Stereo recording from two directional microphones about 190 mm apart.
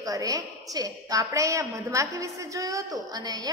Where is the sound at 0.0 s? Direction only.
20° right (ahead or behind).